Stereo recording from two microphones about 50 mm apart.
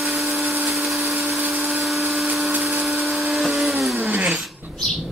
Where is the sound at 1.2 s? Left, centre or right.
Right.